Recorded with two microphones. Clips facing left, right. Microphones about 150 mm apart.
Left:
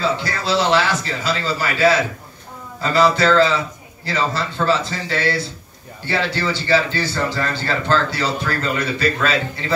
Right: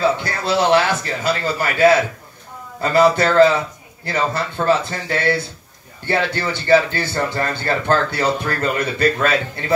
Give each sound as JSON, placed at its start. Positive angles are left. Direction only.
{"t": 0.0, "sound": "speech", "side_deg": -55}